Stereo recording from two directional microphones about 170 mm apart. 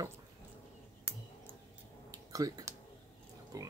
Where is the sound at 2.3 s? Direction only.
20° right (ahead or behind).